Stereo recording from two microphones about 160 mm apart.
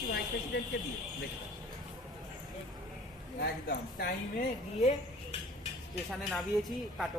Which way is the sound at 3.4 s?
85° left.